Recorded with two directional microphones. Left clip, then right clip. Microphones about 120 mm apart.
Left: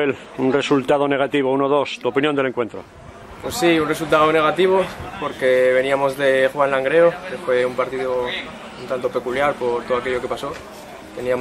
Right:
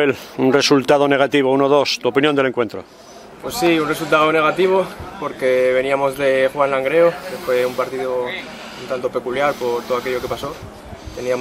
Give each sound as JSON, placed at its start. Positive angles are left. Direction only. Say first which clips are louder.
{"t": 0.0, "sound": "speech", "louder": "right 3 dB", "side_deg": -40}
{"t": 3.4, "sound": "speech", "louder": "right 1 dB", "side_deg": 0}